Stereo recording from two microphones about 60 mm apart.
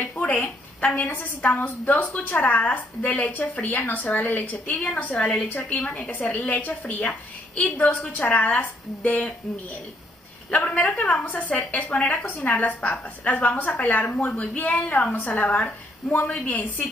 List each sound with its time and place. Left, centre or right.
0.2 s a sound: left
1.1 s a woman's voice: left
10.5 s a woman's voice: left